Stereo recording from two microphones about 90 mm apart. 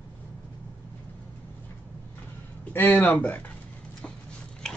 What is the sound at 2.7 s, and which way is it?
Speech, 20° left (ahead or behind).